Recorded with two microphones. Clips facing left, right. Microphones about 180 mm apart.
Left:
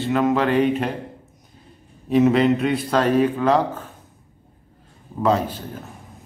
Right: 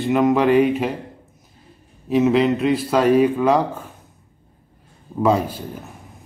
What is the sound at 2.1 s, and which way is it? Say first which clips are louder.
Speech: even; centre (ahead or behind).